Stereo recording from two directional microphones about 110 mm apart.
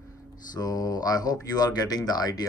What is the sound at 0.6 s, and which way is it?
Speech, 35° left (ahead or behind).